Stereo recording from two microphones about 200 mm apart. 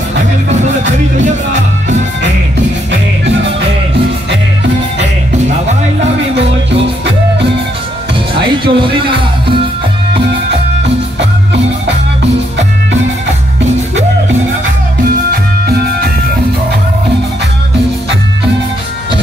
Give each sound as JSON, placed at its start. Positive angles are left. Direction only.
{"t": 0.5, "sound": "music", "side_deg": -35}
{"t": 8.6, "sound": "music", "side_deg": -25}